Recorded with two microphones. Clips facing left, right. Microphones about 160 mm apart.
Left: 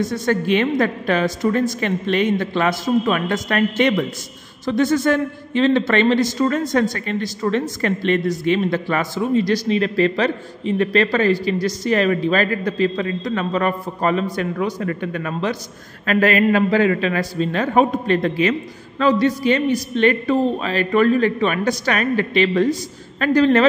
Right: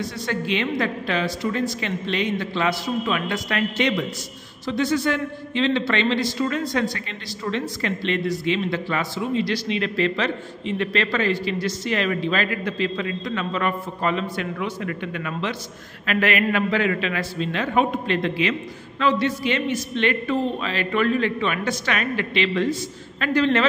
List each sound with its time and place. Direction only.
0.0 s a man's voice: 50° left (ahead or behind)